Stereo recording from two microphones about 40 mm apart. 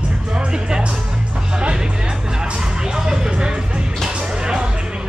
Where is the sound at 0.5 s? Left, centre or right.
Centre.